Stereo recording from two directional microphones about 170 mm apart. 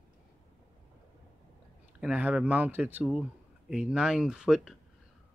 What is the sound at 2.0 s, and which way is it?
Speech, 5° right (ahead or behind).